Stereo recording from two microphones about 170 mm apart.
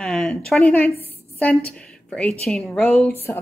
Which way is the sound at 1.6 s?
5° left (ahead or behind).